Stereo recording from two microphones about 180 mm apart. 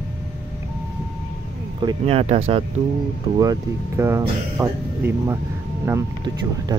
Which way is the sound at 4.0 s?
15° right (ahead or behind).